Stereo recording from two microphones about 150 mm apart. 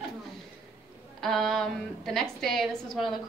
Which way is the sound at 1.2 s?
Centre (ahead or behind).